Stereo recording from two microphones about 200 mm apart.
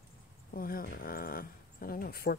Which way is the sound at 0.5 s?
45° left (ahead or behind).